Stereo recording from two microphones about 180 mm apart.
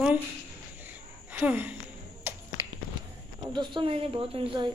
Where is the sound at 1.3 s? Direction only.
10° right (ahead or behind).